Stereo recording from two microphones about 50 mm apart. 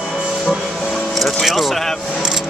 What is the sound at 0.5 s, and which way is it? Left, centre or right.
Music, centre.